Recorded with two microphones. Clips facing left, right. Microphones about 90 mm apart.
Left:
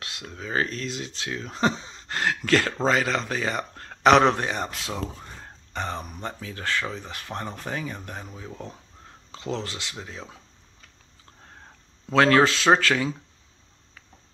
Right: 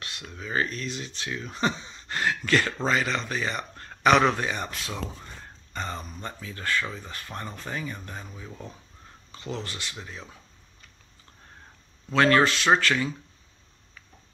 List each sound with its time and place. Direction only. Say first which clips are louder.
0.3 s speech: left 1 dB; 80° left
4.6 s speech: left 2 dB; 90° left
5.4 s a sound: left 3 dB; 70° left (ahead or behind)
6.2 s speech: even; 75° left (ahead or behind)
8.4 s speech: left 3 dB; 55° left (ahead or behind)
9.3 s speech: left 4 dB; 90° left
12.1 s speech: left 2 dB; 90° left